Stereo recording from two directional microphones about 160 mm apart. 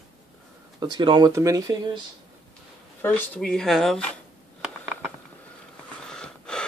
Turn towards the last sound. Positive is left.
turn(degrees=5)  # may be behind; listen again after turning